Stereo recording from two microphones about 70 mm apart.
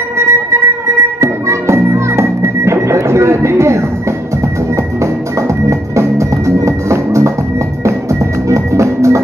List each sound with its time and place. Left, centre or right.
0.2 s music: right
5.7 s music: right